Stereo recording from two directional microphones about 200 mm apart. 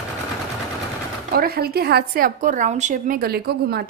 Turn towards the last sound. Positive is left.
turn(degrees=-50)  # may be behind; listen again after turning